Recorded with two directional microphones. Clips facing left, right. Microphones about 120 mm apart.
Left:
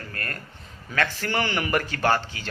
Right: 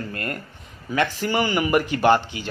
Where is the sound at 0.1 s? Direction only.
20° right (ahead or behind).